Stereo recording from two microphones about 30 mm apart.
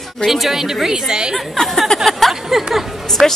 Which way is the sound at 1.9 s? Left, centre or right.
Centre.